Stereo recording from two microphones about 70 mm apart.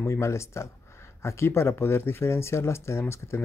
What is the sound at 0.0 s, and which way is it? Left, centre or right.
Speech, left.